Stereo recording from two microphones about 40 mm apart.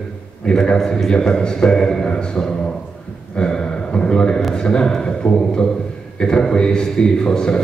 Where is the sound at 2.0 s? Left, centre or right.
Left.